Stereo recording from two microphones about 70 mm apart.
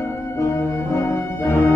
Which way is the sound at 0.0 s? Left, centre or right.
Left.